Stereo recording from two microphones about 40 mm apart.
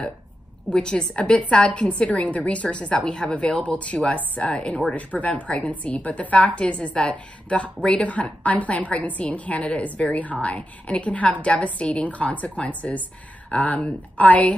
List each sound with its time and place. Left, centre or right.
0.7 s a woman's voice: left
4.9 s a woman's voice: left
8.0 s a woman's voice: left